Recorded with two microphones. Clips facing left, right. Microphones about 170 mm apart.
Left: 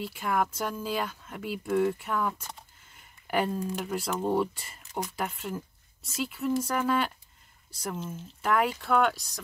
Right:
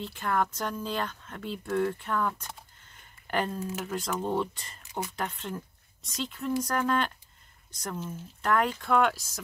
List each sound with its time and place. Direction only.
0.0 s speech: 10° left (ahead or behind)
3.5 s speech: 5° right (ahead or behind)
3.9 s speech: 10° left (ahead or behind)